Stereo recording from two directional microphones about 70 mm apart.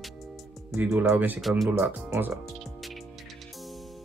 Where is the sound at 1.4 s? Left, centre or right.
Centre.